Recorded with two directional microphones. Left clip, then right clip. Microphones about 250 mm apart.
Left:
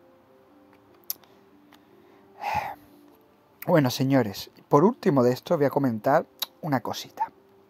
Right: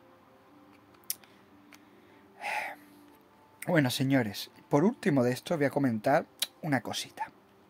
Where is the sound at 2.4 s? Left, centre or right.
Centre.